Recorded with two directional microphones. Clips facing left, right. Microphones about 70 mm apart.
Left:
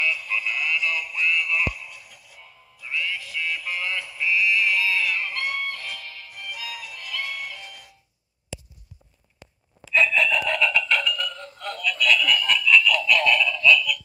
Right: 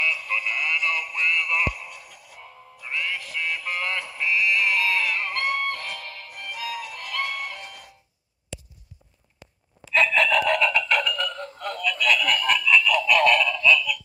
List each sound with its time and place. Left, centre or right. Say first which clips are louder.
0.1 s synthetic singing: even; right
1.1 s music: left 2 dB; right
1.9 s a sound: right 3 dB; right
2.9 s music: even; right
3.3 s synthetic singing: even; right
3.8 s sheep: even; right
5.0 s a sound: right 1 dB; right
5.7 s music: right 3 dB; right
10.1 s chicken: right 2 dB; right
10.4 s music: right 2 dB; right
11.5 s a sound: left 1 dB; right
12.3 s a sound: even; right
12.9 s synthetic singing: right 2 dB; right
13.6 s synthetic singing: left 1 dB; right